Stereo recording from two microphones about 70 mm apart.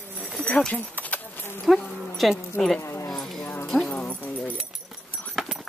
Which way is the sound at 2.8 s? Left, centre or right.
Left.